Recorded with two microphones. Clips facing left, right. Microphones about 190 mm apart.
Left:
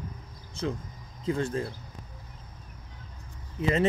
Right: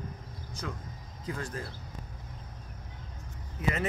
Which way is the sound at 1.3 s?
25° left (ahead or behind).